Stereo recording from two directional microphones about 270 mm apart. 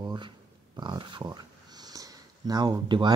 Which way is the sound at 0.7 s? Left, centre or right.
Centre.